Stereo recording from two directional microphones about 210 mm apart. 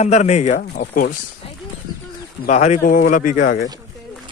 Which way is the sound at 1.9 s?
20° left (ahead or behind).